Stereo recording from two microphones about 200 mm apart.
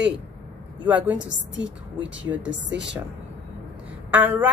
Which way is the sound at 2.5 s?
60° right (ahead or behind).